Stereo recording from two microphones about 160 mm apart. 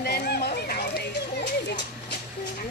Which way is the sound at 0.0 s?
90° left.